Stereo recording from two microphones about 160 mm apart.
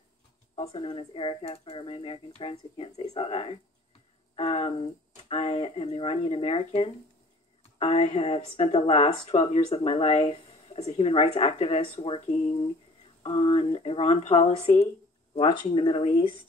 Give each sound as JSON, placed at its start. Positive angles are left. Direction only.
{"t": 0.6, "sound": "speech", "side_deg": 35}